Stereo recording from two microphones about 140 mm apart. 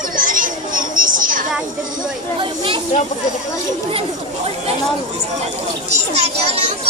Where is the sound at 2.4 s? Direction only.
35° right (ahead or behind).